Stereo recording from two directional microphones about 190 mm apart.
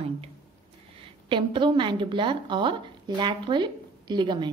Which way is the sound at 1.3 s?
25° right (ahead or behind).